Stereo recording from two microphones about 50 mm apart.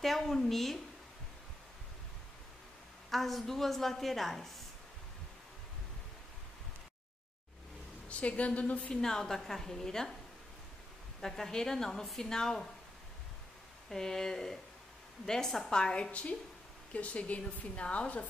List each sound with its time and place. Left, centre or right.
0.0 s a woman's voice: centre
3.1 s a woman's voice: centre
8.1 s speech: left
8.9 s speech: centre
11.1 s speech: centre
13.8 s speech: centre; by 18.2 s left